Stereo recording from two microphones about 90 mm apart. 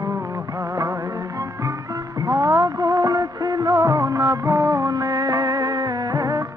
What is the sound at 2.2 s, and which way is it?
Music of bollywood, 40° right (ahead or behind).